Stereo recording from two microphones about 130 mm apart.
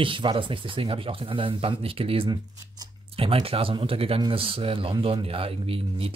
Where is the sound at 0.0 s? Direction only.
40° right (ahead or behind).